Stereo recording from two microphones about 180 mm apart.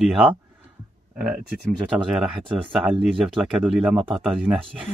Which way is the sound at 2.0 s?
5° right (ahead or behind).